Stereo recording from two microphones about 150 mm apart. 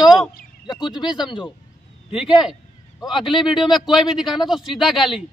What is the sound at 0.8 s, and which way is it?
Speech, 30° left (ahead or behind).